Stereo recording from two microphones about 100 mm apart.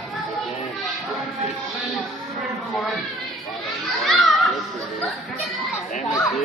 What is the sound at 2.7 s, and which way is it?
A child's voice, 5° left (ahead or behind).